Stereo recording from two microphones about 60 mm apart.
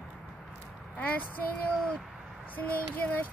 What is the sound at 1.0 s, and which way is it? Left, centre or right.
Child singing, left.